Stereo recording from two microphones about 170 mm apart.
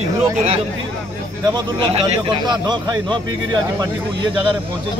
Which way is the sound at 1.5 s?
30° right (ahead or behind).